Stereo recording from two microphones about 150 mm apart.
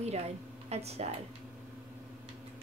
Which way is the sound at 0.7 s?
45° right (ahead or behind).